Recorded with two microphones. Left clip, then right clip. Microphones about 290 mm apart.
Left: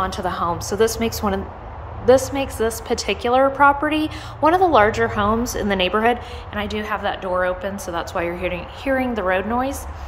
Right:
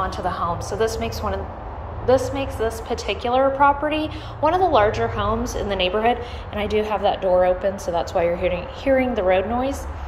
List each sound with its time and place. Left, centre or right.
0.0 s a woman's voice: centre
6.5 s a woman's voice: centre